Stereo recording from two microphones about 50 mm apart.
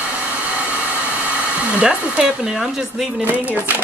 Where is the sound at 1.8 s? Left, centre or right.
Centre.